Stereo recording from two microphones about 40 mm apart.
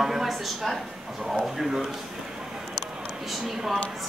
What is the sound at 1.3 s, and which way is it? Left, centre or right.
Speech, centre.